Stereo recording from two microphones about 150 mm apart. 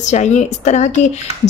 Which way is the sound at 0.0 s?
50° left (ahead or behind).